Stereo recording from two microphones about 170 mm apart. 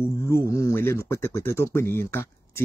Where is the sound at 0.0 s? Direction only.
15° left (ahead or behind).